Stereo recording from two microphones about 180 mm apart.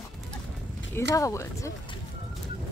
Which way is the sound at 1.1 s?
15° left (ahead or behind).